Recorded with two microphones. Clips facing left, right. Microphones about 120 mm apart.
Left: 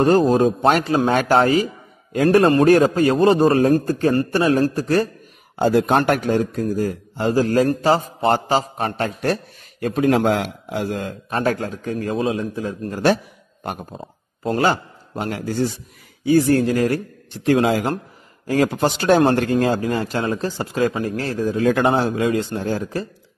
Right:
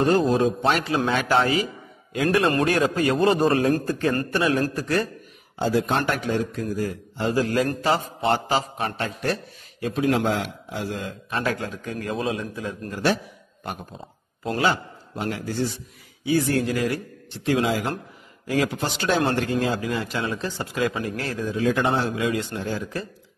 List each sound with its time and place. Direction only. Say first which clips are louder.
0.0 s a man's voice: left 5 dB; 40° left (ahead or behind)
5.6 s a man's voice: left 6 dB; 55° left (ahead or behind); by 13.0 s 35° left (ahead or behind)
14.4 s a man's voice: left 4 dB; 40° left (ahead or behind)